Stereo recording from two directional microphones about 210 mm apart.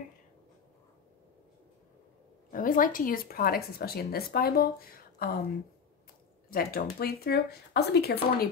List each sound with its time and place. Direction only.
2.5 s speech: 40° left (ahead or behind)
6.5 s speech: 45° left (ahead or behind)